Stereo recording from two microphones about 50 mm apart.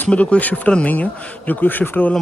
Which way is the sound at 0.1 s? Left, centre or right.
Left.